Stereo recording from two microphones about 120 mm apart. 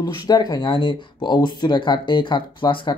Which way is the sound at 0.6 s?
45° left (ahead or behind).